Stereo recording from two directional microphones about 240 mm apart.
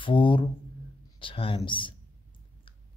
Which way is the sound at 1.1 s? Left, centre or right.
Left.